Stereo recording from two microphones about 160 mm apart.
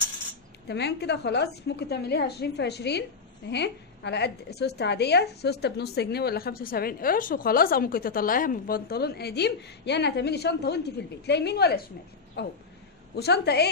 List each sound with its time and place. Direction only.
0.7 s a woman's voice: 90° left